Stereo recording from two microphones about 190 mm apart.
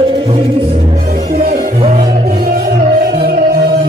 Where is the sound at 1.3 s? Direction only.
50° right (ahead or behind).